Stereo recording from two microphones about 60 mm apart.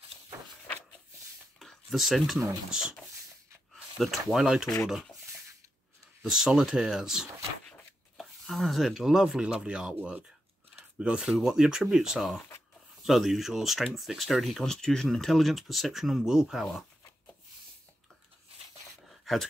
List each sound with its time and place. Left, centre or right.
1.6 s a sound: centre
2.7 s speech: centre
3.7 s a sound: centre
4.3 s speech: centre
6.2 s speech: centre
8.2 s speech: centre
11.0 s speech: centre
11.2 s speech: centre
19.0 s a sound: centre